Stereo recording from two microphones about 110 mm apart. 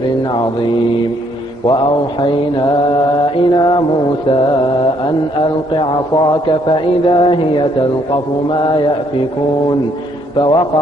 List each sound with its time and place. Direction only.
7.1 s speech: 45° left (ahead or behind)
10.3 s speech: 45° left (ahead or behind)